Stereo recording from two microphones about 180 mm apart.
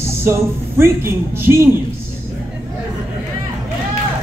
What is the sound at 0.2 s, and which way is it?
Speech, 15° right (ahead or behind).